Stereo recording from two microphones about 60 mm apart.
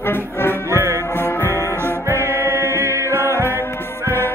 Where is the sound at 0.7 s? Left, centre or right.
Right.